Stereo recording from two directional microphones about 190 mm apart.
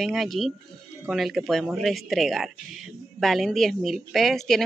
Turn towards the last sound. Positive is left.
turn(degrees=0)  # may be behind; listen again after turning